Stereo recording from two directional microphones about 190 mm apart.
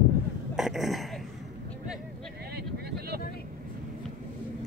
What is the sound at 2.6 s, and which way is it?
Vehicle, 55° right (ahead or behind).